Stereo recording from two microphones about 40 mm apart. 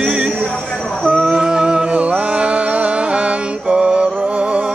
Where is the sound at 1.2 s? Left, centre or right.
Centre.